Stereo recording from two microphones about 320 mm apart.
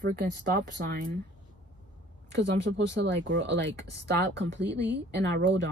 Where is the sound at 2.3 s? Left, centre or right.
Right.